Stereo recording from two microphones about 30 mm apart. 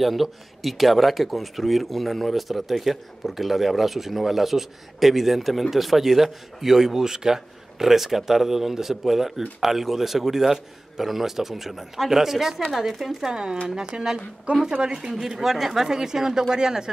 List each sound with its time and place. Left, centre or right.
0.0 s a man's voice: centre
13.3 s speech: right
14.7 s speech: right
15.0 s a man's voice: centre